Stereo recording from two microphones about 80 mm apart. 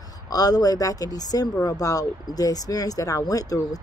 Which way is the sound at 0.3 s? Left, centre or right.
Left.